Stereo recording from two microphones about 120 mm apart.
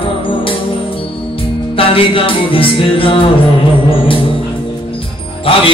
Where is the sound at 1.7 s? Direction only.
50° left (ahead or behind).